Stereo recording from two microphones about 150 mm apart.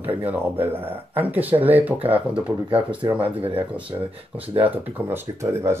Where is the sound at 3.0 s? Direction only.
35° right (ahead or behind).